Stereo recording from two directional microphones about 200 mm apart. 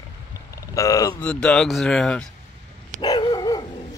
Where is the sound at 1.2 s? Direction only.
5° left (ahead or behind).